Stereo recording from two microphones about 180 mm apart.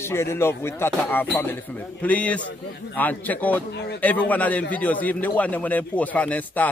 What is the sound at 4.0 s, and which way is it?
Speech, 10° left (ahead or behind).